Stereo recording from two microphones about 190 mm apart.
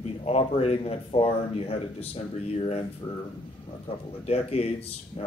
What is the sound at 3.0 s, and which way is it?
Speech, 25° left (ahead or behind).